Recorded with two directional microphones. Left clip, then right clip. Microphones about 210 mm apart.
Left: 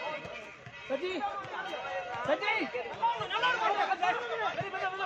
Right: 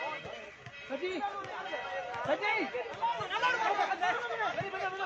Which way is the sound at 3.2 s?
15° left (ahead or behind).